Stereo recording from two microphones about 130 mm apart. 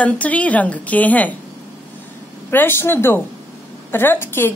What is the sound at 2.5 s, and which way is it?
Speech, 15° left (ahead or behind).